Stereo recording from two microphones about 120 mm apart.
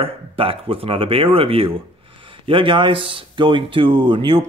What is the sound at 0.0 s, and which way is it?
Speech, 50° right (ahead or behind).